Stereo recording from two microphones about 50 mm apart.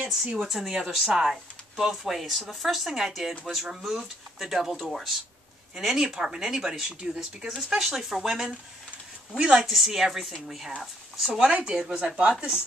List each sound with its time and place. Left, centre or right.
0.4 s speech: centre
5.8 s speech: centre